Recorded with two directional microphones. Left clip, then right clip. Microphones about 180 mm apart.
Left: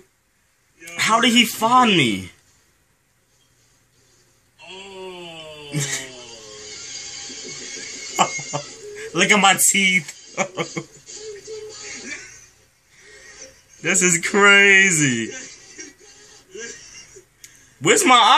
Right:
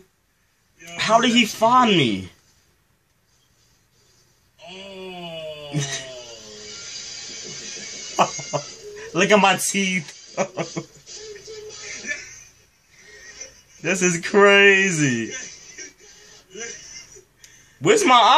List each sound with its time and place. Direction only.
0.9 s a man's voice: 5° right (ahead or behind)
5.7 s speech: 5° right (ahead or behind)
8.2 s speech: 5° right (ahead or behind)
13.8 s a man's voice: 5° right (ahead or behind)
17.4 s a sound: centre (ahead or behind)